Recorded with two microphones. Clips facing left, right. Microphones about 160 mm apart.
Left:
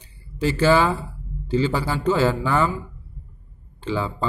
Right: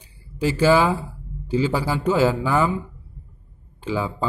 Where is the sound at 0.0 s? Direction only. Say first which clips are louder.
Even; 10° right (ahead or behind).